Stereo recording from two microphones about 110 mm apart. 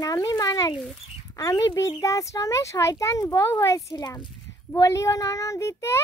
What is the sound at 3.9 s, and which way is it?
A child's voice, 35° left (ahead or behind).